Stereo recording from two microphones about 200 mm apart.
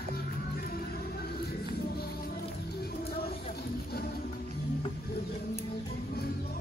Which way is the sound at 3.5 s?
50° left (ahead or behind).